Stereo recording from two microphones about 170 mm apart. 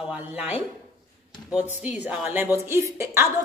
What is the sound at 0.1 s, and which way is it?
A woman's voice, 10° right (ahead or behind).